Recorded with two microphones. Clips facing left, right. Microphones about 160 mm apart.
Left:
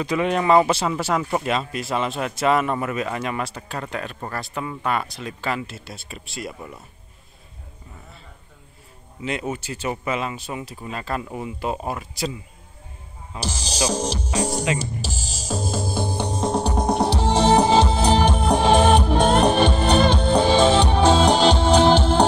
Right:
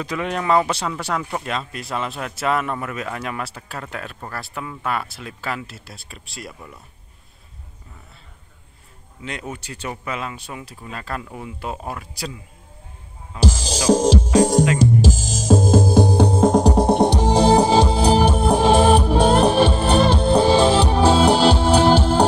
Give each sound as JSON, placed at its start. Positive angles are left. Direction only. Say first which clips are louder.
{"t": 0.0, "sound": "speech", "louder": "left 3 dB", "side_deg": 0}
{"t": 9.2, "sound": "speech", "louder": "left 4 dB", "side_deg": 5}
{"t": 13.4, "sound": "music", "louder": "right 3 dB", "side_deg": -90}
{"t": 16.3, "sound": "music", "louder": "right 5 dB", "side_deg": -45}